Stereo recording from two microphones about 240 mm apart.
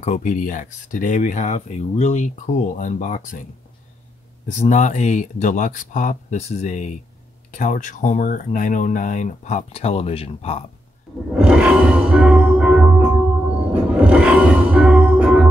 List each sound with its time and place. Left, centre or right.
0.0 s speech: left
4.5 s speech: left
11.3 s music: centre